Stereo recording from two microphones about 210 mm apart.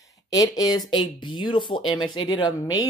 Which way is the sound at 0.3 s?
15° left (ahead or behind).